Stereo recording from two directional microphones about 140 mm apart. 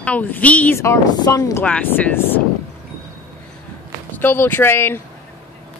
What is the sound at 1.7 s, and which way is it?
Speech, 10° left (ahead or behind).